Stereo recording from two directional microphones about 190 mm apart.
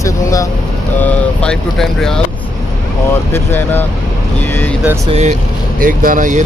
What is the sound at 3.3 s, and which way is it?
Speech, 10° left (ahead or behind).